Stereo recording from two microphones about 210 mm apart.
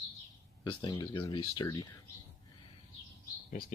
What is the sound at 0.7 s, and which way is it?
Speech, 25° left (ahead or behind).